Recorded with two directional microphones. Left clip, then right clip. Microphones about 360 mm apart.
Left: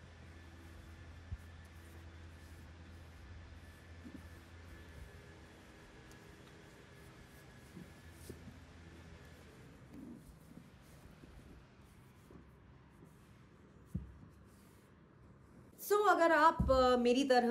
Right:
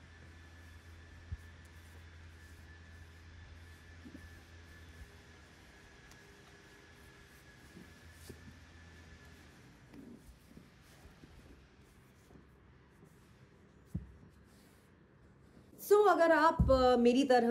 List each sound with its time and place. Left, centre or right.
13.9 s heart sounds: right
15.8 s speech: centre